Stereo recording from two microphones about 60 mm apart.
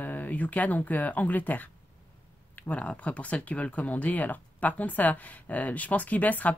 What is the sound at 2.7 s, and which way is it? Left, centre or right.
Speech, left.